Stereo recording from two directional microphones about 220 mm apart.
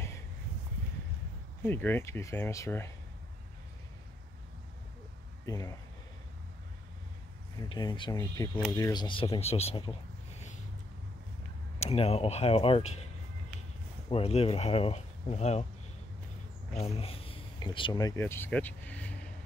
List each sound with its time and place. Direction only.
1.6 s speech: 10° left (ahead or behind)
5.4 s speech: 15° left (ahead or behind)
7.6 s speech: 20° left (ahead or behind)
11.8 s speech: 30° left (ahead or behind)
14.0 s speech: 25° left (ahead or behind)
16.7 s speech: 30° left (ahead or behind); by 19.1 s 5° left (ahead or behind)